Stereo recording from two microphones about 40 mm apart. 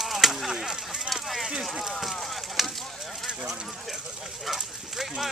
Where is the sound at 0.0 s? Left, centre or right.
Centre.